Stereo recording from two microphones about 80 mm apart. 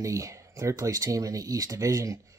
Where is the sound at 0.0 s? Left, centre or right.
Right.